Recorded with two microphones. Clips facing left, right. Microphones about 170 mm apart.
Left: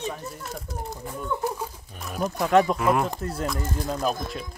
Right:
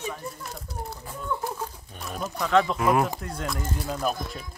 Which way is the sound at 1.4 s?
10° left (ahead or behind).